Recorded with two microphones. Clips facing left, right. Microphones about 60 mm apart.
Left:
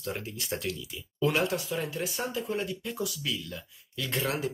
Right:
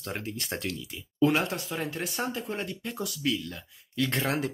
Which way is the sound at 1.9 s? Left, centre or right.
Right.